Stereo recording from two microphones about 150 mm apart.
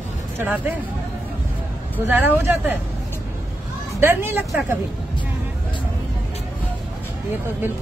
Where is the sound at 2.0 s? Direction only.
15° right (ahead or behind).